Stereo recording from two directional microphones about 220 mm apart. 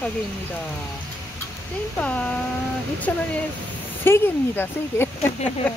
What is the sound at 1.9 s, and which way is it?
Speech, 5° left (ahead or behind).